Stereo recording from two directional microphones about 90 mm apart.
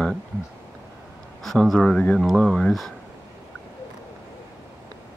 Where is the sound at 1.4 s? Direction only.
Centre (ahead or behind).